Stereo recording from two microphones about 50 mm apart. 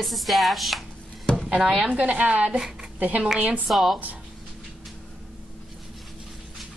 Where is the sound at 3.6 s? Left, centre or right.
Centre.